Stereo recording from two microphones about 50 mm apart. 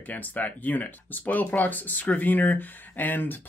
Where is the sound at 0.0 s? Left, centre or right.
Left.